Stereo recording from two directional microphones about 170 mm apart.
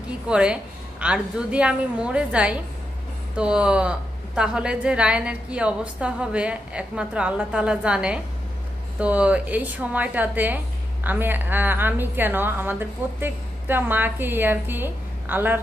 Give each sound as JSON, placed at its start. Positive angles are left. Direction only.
{"t": 0.3, "sound": "a woman's voice", "side_deg": -5}